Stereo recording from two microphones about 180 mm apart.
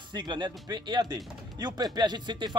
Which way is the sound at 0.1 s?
25° right (ahead or behind).